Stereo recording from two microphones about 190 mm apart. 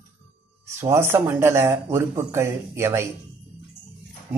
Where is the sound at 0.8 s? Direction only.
10° right (ahead or behind).